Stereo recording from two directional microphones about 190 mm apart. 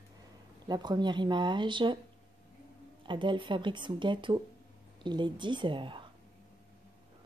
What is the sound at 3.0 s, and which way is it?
Speech, 25° right (ahead or behind).